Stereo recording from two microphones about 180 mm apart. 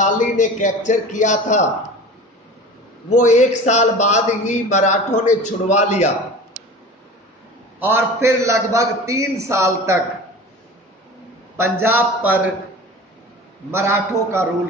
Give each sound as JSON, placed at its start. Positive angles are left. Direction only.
{"t": 0.0, "sound": "a man's voice", "side_deg": 45}
{"t": 3.1, "sound": "a man's voice", "side_deg": 40}
{"t": 7.8, "sound": "a man's voice", "side_deg": -15}
{"t": 11.8, "sound": "a man's voice", "side_deg": -10}
{"t": 13.7, "sound": "a man's voice", "side_deg": -15}